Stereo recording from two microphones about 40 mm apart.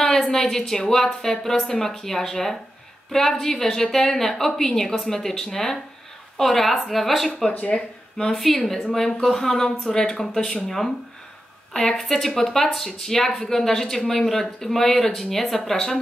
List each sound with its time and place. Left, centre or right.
0.0 s speech: centre
7.7 s speech: centre
8.4 s a woman's voice: centre
12.0 s speech: centre